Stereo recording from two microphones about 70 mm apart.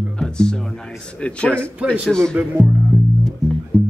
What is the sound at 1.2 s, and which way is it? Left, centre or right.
A man's voice, centre.